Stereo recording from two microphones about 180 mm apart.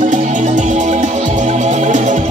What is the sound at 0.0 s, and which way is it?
Music, 45° right (ahead or behind).